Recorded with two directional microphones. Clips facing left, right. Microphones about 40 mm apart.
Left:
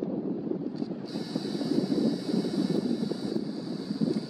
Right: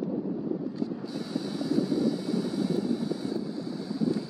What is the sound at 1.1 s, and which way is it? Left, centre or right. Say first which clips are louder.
Vehicle: even; right.